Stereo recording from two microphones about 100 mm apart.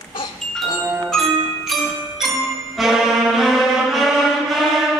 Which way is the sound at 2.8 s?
Centre (ahead or behind).